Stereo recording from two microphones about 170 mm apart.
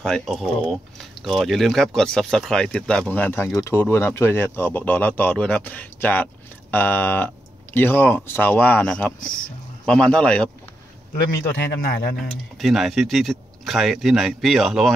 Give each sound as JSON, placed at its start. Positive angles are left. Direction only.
{"t": 0.0, "sound": "speech", "side_deg": 0}
{"t": 11.7, "sound": "speech", "side_deg": 70}
{"t": 12.5, "sound": "speech", "side_deg": 0}